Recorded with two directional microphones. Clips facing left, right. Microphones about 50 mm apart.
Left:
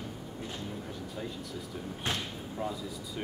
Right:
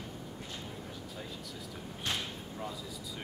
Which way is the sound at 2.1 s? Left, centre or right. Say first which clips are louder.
Left 2 dB; left.